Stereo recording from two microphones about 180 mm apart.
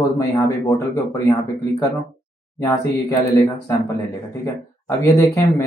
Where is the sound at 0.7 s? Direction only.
20° left (ahead or behind).